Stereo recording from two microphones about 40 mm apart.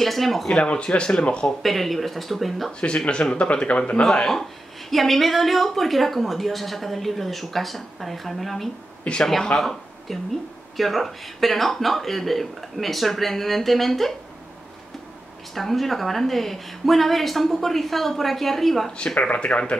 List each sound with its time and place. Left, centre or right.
0.0 s a woman's voice: centre
0.6 s speech: left
1.6 s a woman's voice: centre
3.1 s speech: left
4.0 s speech: centre
4.3 s a woman's voice: centre
9.0 s a man's voice: left
9.6 s a woman's voice: centre
15.5 s a woman's voice: centre
19.1 s speech: left